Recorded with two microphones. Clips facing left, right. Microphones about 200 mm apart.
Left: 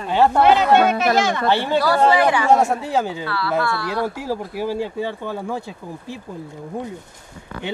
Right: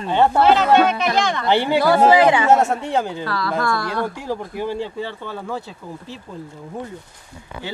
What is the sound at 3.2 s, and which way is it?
Speech, 40° right (ahead or behind).